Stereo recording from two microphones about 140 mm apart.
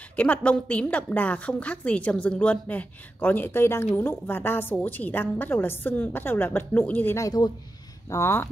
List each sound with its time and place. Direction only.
0.1 s a woman's voice: 10° left (ahead or behind)